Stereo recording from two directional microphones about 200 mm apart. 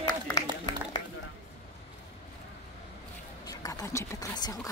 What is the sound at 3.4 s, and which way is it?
Speech, 20° left (ahead or behind).